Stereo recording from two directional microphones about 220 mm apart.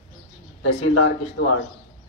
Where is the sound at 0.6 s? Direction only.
70° left (ahead or behind).